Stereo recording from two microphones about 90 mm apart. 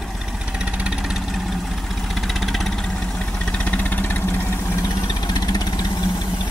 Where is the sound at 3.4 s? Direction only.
15° left (ahead or behind).